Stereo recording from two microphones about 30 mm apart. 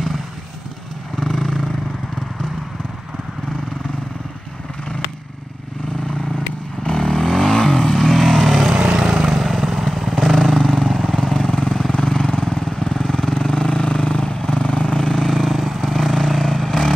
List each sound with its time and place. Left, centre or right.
1.2 s vehicle: centre
6.8 s vehicle: centre
8.9 s vehicle: right
9.2 s vehicle: centre
15.5 s vehicle: centre
15.8 s vehicle: centre